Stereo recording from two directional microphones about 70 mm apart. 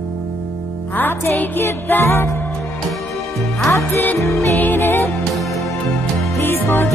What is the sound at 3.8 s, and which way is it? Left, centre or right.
Music, left.